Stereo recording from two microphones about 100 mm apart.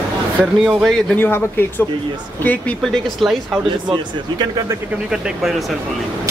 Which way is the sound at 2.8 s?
Centre (ahead or behind).